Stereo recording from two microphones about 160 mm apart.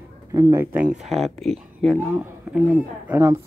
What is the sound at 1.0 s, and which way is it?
Speech, centre (ahead or behind).